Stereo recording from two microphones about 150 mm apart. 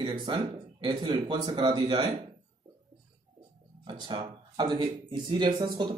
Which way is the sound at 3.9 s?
30° right (ahead or behind).